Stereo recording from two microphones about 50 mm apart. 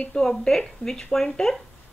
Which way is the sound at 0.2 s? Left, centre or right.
Left.